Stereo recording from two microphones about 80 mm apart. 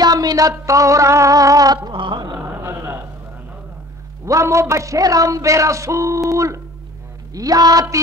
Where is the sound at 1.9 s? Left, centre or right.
Right.